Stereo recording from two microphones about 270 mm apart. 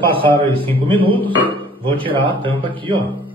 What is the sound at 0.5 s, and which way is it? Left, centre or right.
A man's voice, centre.